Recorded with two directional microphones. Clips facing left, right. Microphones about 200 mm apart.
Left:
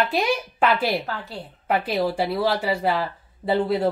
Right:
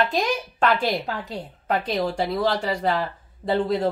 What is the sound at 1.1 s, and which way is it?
Speech, 15° right (ahead or behind).